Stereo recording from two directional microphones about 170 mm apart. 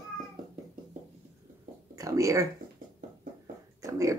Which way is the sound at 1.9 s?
20° right (ahead or behind).